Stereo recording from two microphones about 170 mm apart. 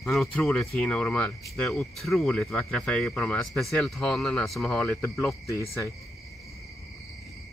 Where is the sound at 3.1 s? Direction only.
15° left (ahead or behind).